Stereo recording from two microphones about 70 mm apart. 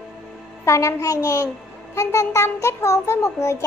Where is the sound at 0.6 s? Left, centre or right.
Left.